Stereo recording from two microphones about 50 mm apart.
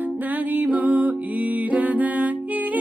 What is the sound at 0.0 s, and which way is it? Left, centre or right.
Music, right.